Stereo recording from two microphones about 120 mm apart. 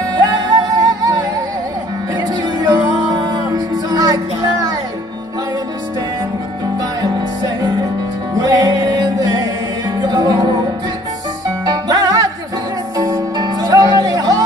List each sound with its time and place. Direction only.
0.0 s music: 35° right (ahead or behind)
6.8 s music: 35° right (ahead or behind)